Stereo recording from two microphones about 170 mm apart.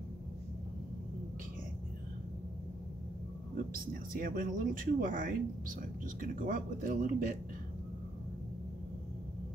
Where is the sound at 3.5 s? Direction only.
55° right (ahead or behind).